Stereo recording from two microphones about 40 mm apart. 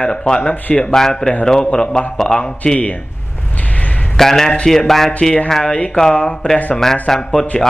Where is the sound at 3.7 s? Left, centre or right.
Left.